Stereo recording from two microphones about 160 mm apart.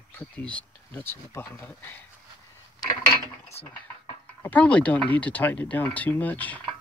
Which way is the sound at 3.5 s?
40° left (ahead or behind).